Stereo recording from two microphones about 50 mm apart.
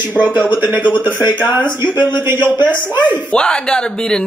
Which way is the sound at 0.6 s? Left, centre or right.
Right.